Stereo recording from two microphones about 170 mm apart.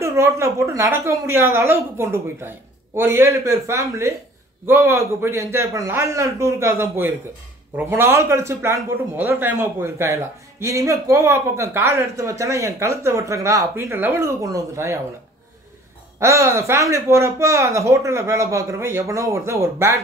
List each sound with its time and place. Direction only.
0.0 s a man's voice: 15° right (ahead or behind)
16.2 s a man's voice: 15° right (ahead or behind)